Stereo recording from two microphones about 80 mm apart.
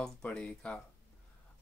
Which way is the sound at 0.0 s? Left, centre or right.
Centre.